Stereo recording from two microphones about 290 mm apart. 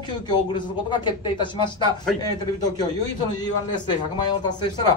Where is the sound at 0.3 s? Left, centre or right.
Centre.